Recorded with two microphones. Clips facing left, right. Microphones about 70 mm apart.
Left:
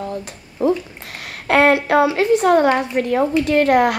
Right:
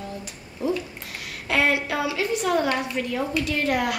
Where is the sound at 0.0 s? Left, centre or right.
Left.